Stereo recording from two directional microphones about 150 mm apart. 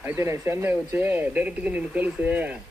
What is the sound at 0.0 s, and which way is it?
Speech, 15° right (ahead or behind).